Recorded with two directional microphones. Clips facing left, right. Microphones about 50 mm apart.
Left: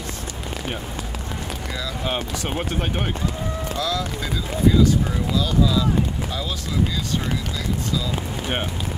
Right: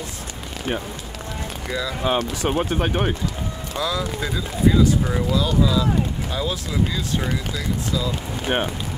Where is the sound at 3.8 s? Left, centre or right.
Centre.